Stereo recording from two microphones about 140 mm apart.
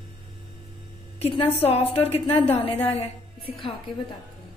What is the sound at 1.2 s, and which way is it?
A woman's voice, 45° left (ahead or behind).